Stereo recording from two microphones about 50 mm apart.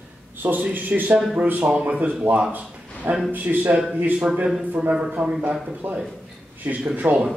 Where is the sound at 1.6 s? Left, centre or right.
Right.